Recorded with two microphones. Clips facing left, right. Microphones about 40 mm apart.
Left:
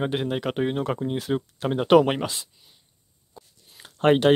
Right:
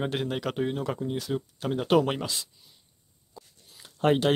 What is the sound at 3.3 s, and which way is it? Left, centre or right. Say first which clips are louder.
Writing: left 1 dB; left.